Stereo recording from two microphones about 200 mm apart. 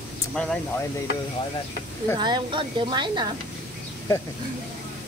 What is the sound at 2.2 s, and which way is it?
Speech, 25° right (ahead or behind).